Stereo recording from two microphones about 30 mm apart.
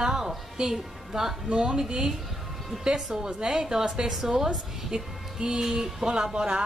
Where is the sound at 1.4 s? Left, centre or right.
Right.